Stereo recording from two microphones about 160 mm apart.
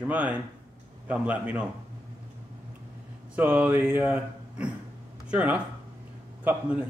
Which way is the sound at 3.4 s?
10° right (ahead or behind).